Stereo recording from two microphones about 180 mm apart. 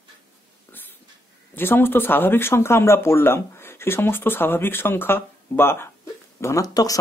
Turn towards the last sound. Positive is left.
turn(degrees=20)  # may be behind; listen again after turning